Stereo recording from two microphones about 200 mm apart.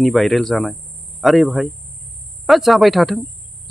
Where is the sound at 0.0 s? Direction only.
Centre (ahead or behind).